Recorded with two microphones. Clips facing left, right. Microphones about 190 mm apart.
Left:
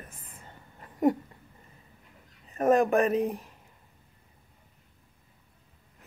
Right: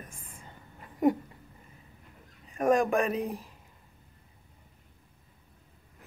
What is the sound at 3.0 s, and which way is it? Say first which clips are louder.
Speech: left 4 dB; 35° left (ahead or behind).